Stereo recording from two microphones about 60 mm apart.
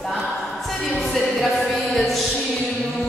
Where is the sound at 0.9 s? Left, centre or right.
Centre.